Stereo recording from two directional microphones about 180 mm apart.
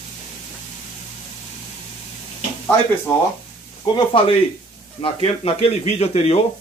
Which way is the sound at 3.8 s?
25° left (ahead or behind).